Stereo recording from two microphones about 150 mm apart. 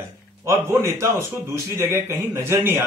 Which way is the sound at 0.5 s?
20° right (ahead or behind).